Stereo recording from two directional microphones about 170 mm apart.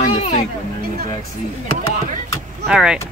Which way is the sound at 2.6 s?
5° right (ahead or behind).